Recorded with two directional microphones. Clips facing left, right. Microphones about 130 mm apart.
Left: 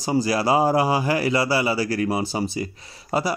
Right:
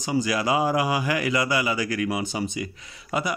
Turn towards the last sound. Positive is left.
turn(degrees=35)  # may be behind; listen again after turning